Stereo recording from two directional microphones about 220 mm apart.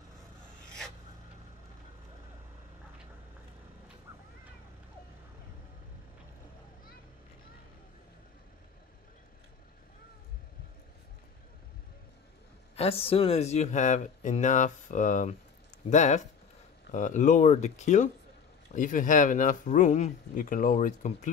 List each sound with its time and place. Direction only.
12.7 s speech: 25° left (ahead or behind)